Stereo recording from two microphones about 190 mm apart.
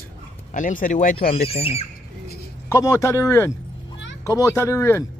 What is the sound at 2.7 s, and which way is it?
Speech, 15° left (ahead or behind).